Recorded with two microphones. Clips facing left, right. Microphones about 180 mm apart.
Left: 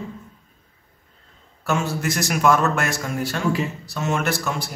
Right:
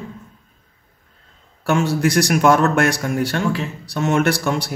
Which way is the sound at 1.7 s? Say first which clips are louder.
Right 6 dB; 70° right (ahead or behind).